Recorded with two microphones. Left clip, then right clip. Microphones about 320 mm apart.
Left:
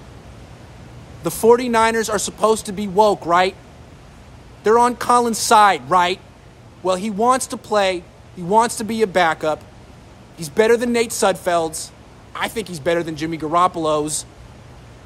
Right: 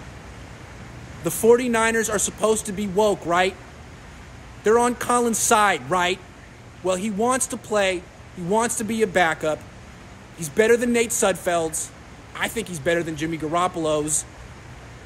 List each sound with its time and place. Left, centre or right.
1.2 s speech: centre
4.6 s speech: centre